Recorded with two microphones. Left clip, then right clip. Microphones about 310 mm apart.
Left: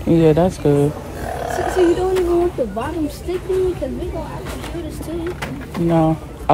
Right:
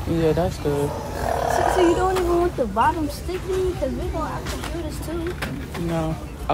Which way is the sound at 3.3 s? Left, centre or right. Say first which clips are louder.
Left 5 dB; centre.